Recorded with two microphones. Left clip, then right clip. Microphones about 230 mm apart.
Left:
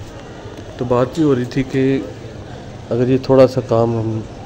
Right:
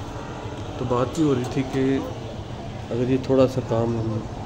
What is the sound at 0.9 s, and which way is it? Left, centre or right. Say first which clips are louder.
Speech: left 7 dB; left.